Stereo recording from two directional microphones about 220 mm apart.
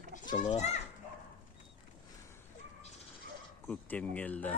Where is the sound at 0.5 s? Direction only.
30° left (ahead or behind).